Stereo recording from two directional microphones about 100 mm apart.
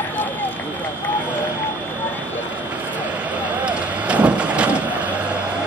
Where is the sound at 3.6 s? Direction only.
10° right (ahead or behind).